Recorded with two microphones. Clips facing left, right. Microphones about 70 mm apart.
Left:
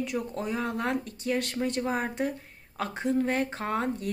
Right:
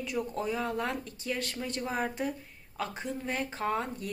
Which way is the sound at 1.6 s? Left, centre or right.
Left.